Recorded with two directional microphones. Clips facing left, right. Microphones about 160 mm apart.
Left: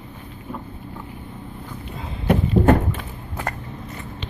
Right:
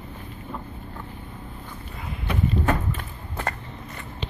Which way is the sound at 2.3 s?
50° left (ahead or behind).